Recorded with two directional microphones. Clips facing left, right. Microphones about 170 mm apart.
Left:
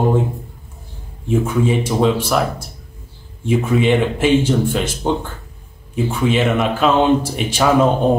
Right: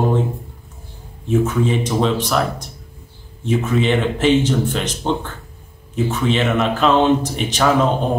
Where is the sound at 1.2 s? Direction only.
10° left (ahead or behind).